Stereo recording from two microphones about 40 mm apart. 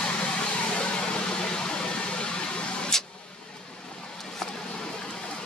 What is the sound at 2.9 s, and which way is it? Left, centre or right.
Vehicle, centre.